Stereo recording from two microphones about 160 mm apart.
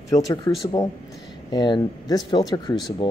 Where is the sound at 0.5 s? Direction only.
20° left (ahead or behind).